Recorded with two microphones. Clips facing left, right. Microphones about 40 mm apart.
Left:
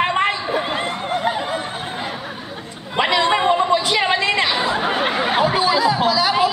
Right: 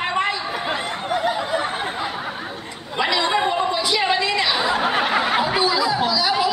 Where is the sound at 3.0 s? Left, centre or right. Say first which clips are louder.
Left 3 dB; left.